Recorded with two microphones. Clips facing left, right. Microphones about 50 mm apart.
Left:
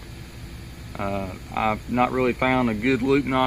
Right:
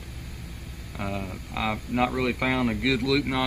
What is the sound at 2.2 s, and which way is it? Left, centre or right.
Speech, left.